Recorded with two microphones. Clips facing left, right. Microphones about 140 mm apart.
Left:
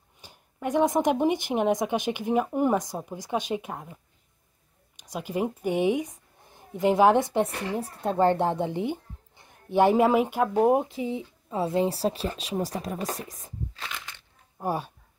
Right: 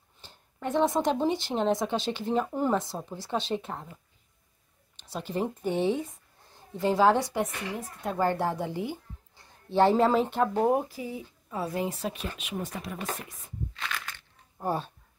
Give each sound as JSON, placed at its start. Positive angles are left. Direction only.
{"t": 0.2, "sound": "speech", "side_deg": 10}
{"t": 10.7, "sound": "speech", "side_deg": 20}
{"t": 13.9, "sound": "a sound", "side_deg": 20}